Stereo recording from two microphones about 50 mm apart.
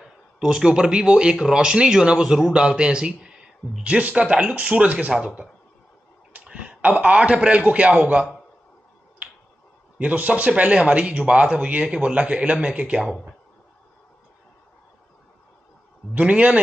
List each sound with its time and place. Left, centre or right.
0.0 s speech: centre
6.4 s a sound: right
6.8 s speech: right
9.2 s finger snapping: right
9.9 s speech: right
16.1 s speech: right